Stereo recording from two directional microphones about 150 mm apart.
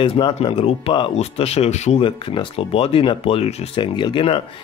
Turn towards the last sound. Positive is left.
turn(degrees=35)  # may be behind; listen again after turning